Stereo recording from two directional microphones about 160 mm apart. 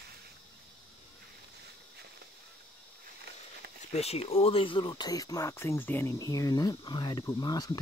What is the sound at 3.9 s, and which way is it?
Speech, 40° left (ahead or behind).